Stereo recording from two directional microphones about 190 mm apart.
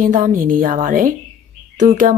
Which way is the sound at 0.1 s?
45° right (ahead or behind).